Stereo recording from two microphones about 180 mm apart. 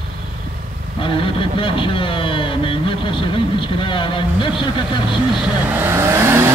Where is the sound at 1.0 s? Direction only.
30° left (ahead or behind).